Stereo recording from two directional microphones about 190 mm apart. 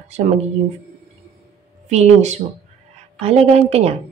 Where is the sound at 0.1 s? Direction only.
35° right (ahead or behind).